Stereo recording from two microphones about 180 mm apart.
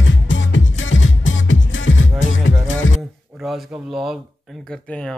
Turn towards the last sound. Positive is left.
turn(degrees=-5)  # may be behind; listen again after turning